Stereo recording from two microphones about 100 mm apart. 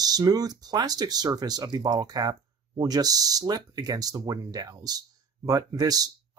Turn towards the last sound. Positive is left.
turn(degrees=-40)  # may be behind; listen again after turning